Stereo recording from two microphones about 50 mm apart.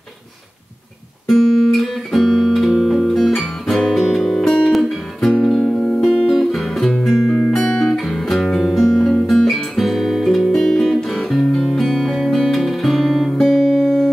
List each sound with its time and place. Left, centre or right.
1.2 s guitar: centre
3.3 s music: centre
9.3 s guitar: centre
11.4 s music: centre